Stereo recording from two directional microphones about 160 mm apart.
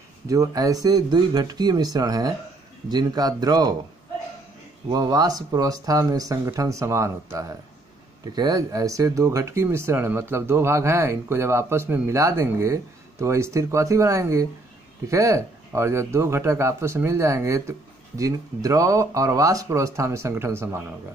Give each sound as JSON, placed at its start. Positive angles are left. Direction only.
{"t": 0.3, "sound": "speech", "side_deg": -20}
{"t": 4.8, "sound": "speech", "side_deg": -25}